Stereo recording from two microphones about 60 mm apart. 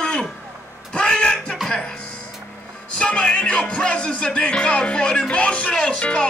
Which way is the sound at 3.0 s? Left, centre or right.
Centre.